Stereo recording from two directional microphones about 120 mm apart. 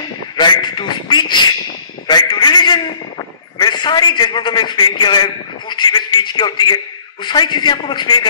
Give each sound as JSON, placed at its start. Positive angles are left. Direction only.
{"t": 0.4, "sound": "a man's voice", "side_deg": 40}